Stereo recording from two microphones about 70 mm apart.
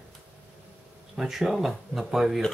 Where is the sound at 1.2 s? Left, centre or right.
Centre.